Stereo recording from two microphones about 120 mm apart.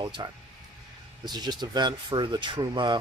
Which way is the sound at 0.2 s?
40° right (ahead or behind).